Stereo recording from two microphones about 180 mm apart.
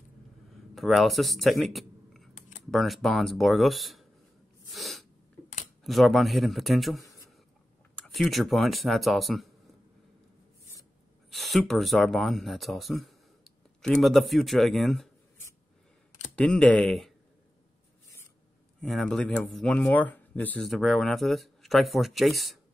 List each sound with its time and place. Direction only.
0.7 s speech: centre (ahead or behind)
4.7 s sneeze: centre (ahead or behind)
5.9 s speech: centre (ahead or behind)
7.0 s a sound: 15° left (ahead or behind)
8.1 s speech: centre (ahead or behind)
11.2 s speech: centre (ahead or behind)
16.3 s speech: 5° left (ahead or behind)
18.8 s speech: centre (ahead or behind)